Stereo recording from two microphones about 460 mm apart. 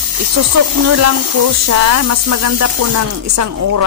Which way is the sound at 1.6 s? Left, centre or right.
Right.